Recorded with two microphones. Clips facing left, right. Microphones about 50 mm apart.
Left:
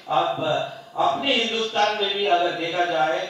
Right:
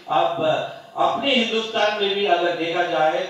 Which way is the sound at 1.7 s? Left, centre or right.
Centre.